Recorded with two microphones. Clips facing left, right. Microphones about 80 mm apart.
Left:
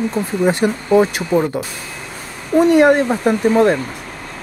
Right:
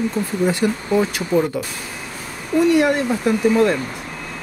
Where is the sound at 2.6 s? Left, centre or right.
Left.